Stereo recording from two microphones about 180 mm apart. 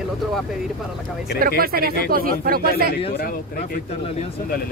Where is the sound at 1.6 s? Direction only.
55° right (ahead or behind).